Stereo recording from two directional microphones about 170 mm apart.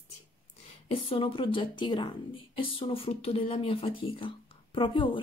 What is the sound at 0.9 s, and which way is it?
Speech, 35° left (ahead or behind).